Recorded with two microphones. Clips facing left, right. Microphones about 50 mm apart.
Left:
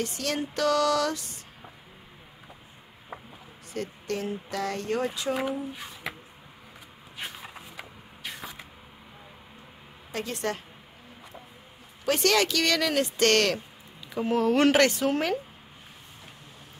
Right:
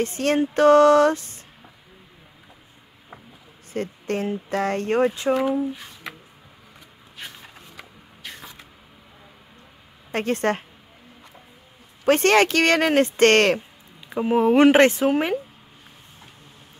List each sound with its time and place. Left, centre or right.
0.0 s speech: right
3.7 s speech: right
7.2 s a sound: centre
10.1 s speech: right
12.0 s speech: right
14.0 s speech: right